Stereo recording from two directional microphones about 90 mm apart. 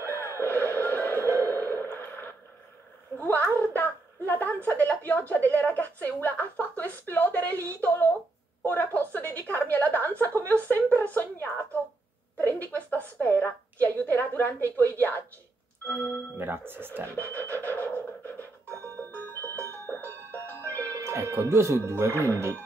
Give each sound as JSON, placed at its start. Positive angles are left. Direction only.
{"t": 0.0, "sound": "music", "side_deg": 25}
{"t": 1.5, "sound": "a sound", "side_deg": 25}
{"t": 3.5, "sound": "a woman's voice", "side_deg": 20}
{"t": 16.3, "sound": "speech", "side_deg": -25}
{"t": 17.1, "sound": "music", "side_deg": 20}
{"t": 20.2, "sound": "music", "side_deg": -30}